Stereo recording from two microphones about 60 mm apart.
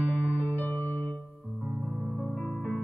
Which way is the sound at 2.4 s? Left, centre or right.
Centre.